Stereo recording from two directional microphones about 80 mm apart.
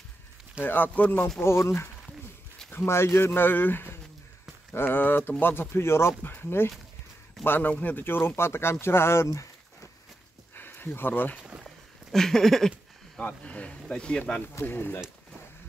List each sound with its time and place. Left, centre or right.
0.6 s speech: left
1.4 s speech: left
10.5 s a sound: left
11.4 s a sound: centre
12.1 s speech: centre
13.2 s speech: centre
14.5 s speech: left